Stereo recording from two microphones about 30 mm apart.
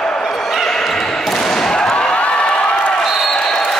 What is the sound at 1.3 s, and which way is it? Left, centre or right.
Basketball bounce, centre.